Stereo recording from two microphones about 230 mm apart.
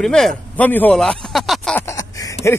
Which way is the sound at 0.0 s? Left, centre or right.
Centre.